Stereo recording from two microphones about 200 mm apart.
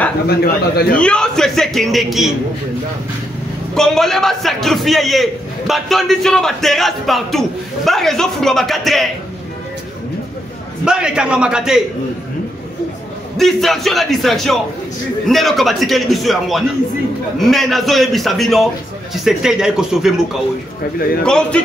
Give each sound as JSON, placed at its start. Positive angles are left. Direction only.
{"t": 0.3, "sound": "speech", "side_deg": 50}
{"t": 0.9, "sound": "a man's voice", "side_deg": 5}
{"t": 3.7, "sound": "a man's voice", "side_deg": 0}
{"t": 10.9, "sound": "a man's voice", "side_deg": -5}
{"t": 13.4, "sound": "a man's voice", "side_deg": 0}
{"t": 21.2, "sound": "a man's voice", "side_deg": 5}